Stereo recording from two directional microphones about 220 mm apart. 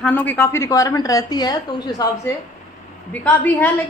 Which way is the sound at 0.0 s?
10° left (ahead or behind).